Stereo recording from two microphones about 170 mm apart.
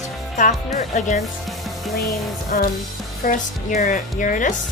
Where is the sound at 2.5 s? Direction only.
55° left (ahead or behind).